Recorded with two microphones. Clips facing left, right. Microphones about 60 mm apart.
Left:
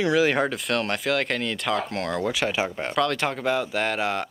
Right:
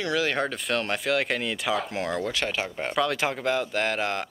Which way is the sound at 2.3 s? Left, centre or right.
Centre.